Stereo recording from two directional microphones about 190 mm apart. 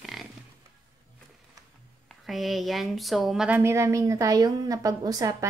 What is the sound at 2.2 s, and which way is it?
Speech, centre (ahead or behind).